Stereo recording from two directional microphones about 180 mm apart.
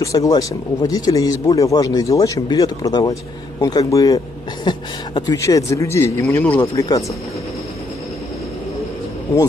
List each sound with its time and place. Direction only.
0.0 s a man's voice: 20° left (ahead or behind)